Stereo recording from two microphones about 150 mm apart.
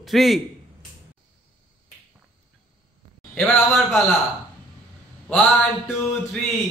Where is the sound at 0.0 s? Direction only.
Centre (ahead or behind).